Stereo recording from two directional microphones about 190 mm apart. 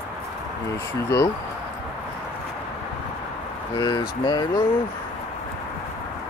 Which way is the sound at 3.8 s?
20° left (ahead or behind).